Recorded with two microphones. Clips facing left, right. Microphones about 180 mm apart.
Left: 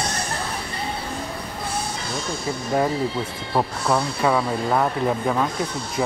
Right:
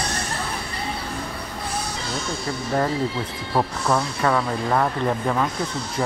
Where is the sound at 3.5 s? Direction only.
10° left (ahead or behind).